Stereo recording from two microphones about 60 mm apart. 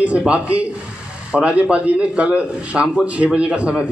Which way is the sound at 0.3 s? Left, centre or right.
Right.